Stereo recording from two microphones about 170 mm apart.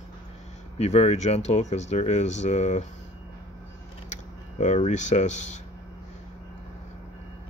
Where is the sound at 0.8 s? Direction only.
40° left (ahead or behind).